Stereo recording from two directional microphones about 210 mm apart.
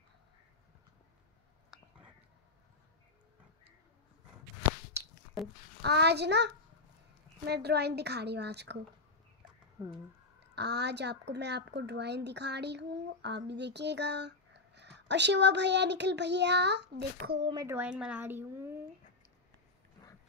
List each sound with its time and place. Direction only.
5.8 s speech: 50° right (ahead or behind)
9.8 s speech: 15° right (ahead or behind)
10.4 s speech: 55° right (ahead or behind)
17.4 s speech: 20° right (ahead or behind)
17.7 s speech: 5° right (ahead or behind)